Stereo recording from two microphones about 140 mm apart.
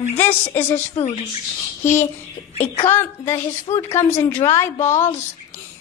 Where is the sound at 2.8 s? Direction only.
15° left (ahead or behind).